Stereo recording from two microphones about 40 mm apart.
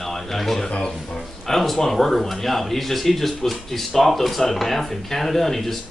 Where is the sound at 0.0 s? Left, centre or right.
Centre.